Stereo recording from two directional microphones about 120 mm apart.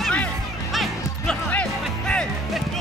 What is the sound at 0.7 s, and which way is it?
Music, centre (ahead or behind).